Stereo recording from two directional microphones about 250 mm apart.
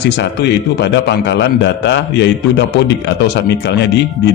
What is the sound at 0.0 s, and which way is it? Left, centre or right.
A man's voice, left.